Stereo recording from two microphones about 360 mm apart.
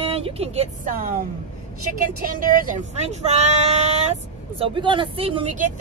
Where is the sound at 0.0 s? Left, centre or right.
Centre.